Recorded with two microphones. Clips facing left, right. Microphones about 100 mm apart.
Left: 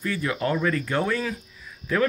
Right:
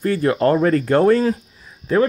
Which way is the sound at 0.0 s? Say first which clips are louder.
Right 10 dB; 45° right (ahead or behind).